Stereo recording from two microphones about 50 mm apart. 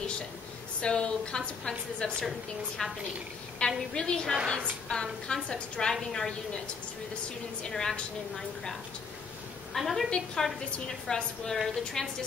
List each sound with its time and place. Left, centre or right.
0.7 s a woman's voice: centre
7.6 s a woman's voice: centre
9.8 s a woman's voice: centre
10.0 s a woman's voice: centre